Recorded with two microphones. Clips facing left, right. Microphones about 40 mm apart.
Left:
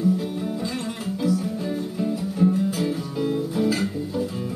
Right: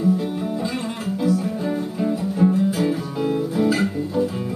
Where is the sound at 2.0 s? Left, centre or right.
Right.